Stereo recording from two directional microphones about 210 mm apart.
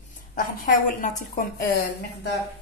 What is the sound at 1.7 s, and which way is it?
Speech, 50° left (ahead or behind).